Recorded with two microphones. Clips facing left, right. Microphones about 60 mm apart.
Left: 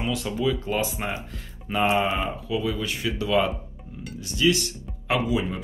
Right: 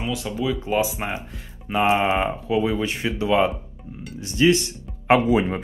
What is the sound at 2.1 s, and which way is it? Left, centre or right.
Speech, right.